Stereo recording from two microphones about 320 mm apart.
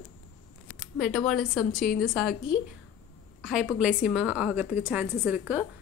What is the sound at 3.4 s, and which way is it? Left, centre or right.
A woman's voice, centre.